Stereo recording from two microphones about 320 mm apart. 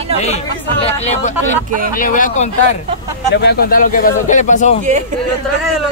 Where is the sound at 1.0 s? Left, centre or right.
Left.